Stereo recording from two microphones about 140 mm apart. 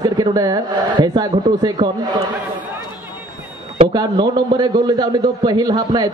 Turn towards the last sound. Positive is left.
turn(degrees=-30)  # may be behind; listen again after turning